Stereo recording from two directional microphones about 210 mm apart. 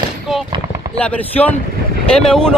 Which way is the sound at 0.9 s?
5° left (ahead or behind).